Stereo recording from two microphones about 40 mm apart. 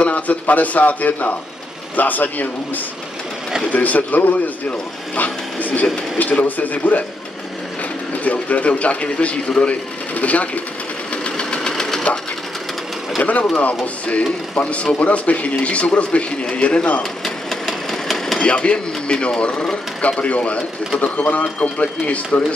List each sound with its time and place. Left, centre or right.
0.0 s speech: left
8.2 s speech: left
11.2 s sewing machine: left
13.2 s speech: left
17.2 s engine: centre
18.4 s speech: left